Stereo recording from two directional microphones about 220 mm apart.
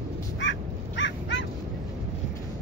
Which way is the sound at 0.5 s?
55° left (ahead or behind).